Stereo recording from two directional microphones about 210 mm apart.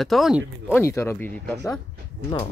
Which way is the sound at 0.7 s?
10° left (ahead or behind).